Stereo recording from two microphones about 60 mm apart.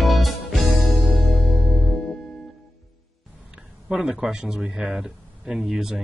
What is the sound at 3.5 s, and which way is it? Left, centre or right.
A man's voice, centre.